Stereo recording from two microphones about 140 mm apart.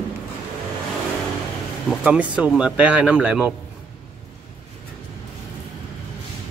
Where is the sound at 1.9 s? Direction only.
10° right (ahead or behind).